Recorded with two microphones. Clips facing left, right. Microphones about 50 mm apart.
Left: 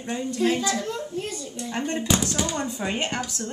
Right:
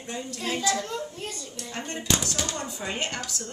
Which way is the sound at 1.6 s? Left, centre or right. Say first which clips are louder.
Left 8 dB; centre.